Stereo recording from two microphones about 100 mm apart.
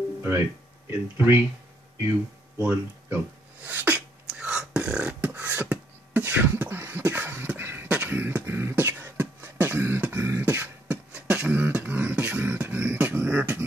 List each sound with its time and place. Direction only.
0.8 s speech: 20° right (ahead or behind)
2.6 s speech: 20° right (ahead or behind)
3.6 s beatboxing: 15° right (ahead or behind)